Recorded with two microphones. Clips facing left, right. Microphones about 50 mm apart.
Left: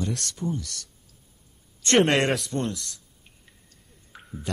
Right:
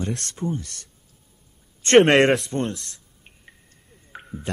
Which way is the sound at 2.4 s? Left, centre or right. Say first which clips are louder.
Right 2 dB; right.